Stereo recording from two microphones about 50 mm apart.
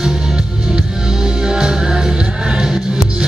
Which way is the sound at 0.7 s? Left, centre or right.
Centre.